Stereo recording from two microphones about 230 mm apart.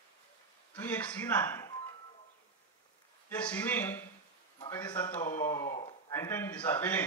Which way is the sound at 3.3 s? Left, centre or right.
Centre.